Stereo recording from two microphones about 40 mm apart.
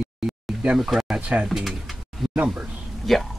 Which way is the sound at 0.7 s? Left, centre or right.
Centre.